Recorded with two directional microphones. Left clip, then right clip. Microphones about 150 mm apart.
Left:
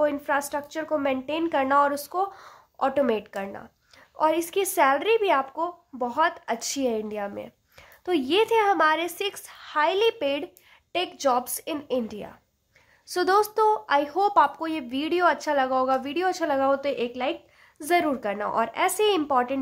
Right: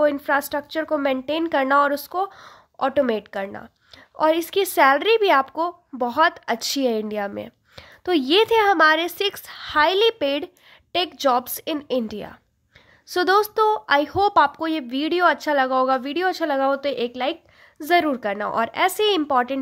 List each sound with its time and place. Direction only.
0.0 s speech: 40° right (ahead or behind)